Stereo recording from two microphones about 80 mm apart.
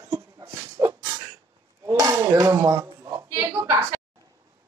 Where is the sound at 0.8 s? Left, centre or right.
Right.